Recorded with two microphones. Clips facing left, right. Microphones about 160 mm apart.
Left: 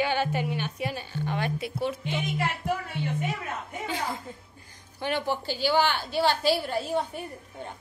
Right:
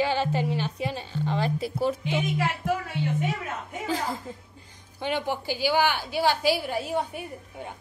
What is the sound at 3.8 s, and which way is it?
Speech, 40° right (ahead or behind).